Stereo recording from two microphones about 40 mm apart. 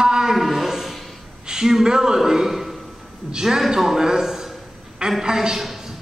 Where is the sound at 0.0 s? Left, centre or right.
Centre.